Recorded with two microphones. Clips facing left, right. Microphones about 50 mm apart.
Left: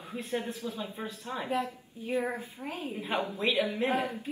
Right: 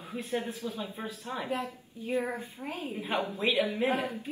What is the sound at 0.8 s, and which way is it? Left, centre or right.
Speech, right.